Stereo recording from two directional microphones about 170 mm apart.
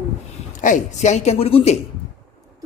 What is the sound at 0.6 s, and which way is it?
Speech, 45° left (ahead or behind).